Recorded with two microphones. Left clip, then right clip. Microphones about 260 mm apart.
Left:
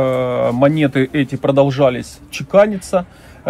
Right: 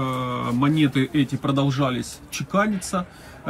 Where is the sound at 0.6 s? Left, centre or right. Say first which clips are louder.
Left 4 dB; centre.